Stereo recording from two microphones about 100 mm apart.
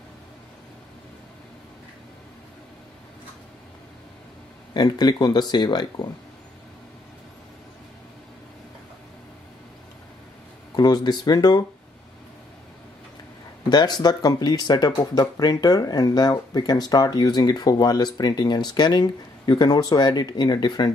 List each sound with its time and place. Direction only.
4.7 s speech: 45° left (ahead or behind)
10.8 s speech: 40° left (ahead or behind)
13.7 s speech: 45° left (ahead or behind)